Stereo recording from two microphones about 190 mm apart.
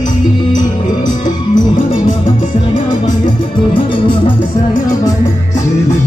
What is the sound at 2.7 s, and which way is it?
Music, 25° left (ahead or behind).